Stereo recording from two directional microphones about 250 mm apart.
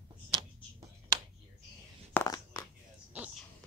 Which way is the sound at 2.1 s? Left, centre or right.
Centre.